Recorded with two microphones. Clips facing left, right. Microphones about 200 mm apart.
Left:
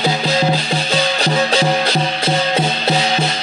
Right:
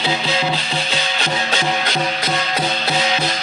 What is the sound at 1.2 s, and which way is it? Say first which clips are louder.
Music: left 5 dB; 35° left (ahead or behind).